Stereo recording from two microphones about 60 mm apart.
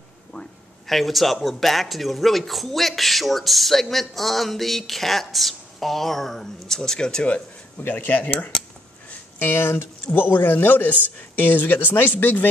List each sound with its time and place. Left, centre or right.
0.8 s speech: centre
7.8 s speech: left